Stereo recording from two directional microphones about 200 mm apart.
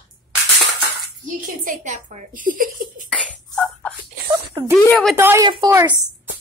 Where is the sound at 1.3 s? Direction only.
40° right (ahead or behind).